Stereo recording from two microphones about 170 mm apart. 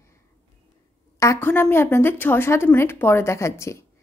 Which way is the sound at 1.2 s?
15° left (ahead or behind).